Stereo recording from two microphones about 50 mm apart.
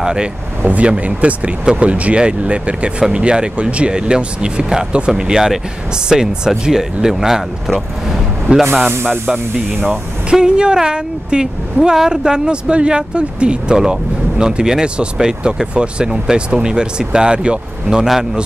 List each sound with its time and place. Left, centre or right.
0.0 s speech: centre
0.6 s speech: right; by 8.6 s centre
10.3 s speech: centre